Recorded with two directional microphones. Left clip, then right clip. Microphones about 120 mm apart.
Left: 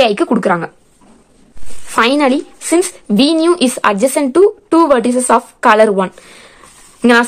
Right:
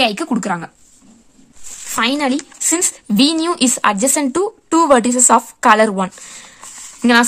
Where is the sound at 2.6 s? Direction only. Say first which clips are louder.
Left 5 dB; 30° right (ahead or behind).